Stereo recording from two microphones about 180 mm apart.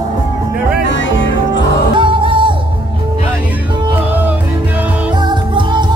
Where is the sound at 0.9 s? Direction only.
90° left.